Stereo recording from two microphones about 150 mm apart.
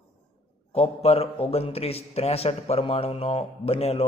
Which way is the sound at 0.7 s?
40° left (ahead or behind).